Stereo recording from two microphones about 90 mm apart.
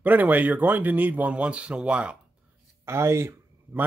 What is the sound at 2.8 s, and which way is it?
Speech, 30° right (ahead or behind).